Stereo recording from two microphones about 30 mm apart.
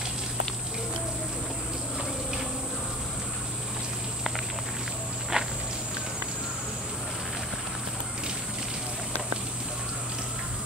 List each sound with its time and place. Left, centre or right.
5.3 s walk: right